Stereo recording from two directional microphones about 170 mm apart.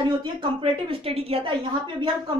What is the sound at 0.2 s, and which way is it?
A woman's voice, 30° right (ahead or behind).